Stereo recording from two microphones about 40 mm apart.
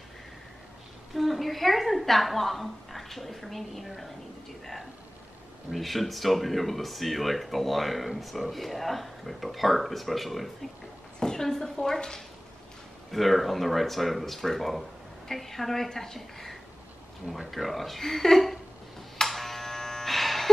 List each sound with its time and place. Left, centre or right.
1.1 s speech: centre
5.8 s speech: centre
11.1 s a woman's voice: centre
13.1 s speech: centre
17.3 s speech: centre
19.1 s music: centre